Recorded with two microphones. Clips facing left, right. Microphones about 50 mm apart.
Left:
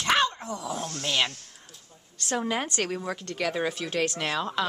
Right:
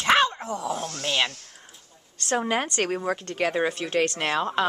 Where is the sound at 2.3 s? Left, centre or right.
Right.